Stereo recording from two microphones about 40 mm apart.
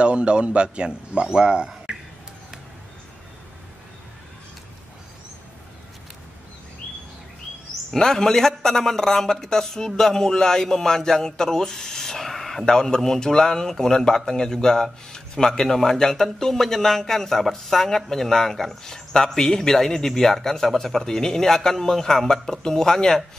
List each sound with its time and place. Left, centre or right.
0.0 s speech: right
1.9 s a sound: right
7.9 s a man's voice: centre
12.6 s a man's voice: centre